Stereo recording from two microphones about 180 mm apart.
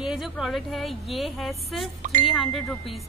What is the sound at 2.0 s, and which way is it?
Speech, 45° right (ahead or behind).